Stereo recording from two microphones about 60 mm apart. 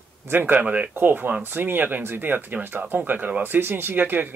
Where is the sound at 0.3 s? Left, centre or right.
Right.